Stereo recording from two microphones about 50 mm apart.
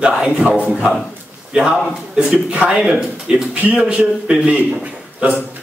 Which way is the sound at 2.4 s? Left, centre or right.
Right.